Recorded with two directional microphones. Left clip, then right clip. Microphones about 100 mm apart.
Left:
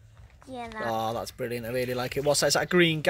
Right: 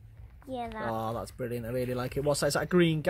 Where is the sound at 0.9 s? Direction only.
15° left (ahead or behind).